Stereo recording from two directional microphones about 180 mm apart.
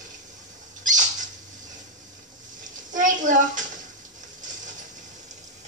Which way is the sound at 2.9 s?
45° right (ahead or behind).